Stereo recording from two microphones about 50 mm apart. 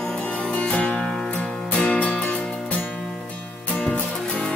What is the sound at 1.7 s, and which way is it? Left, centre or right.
Music, left.